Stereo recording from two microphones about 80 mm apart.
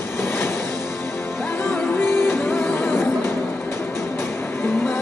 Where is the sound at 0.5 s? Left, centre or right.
Centre.